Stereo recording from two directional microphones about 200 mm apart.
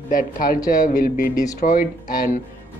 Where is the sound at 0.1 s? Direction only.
45° left (ahead or behind).